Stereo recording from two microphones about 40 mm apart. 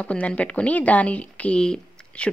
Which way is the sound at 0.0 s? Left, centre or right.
Left.